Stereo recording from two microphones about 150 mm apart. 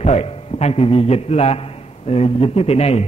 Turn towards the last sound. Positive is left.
turn(degrees=45)  # may be behind; listen again after turning